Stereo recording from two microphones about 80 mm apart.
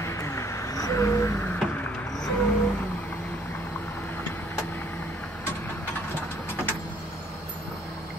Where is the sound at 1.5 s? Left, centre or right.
Centre.